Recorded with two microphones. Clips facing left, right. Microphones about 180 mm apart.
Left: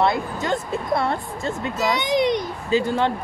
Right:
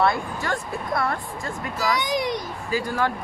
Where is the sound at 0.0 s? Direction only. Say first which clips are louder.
Left 2 dB; 20° left (ahead or behind).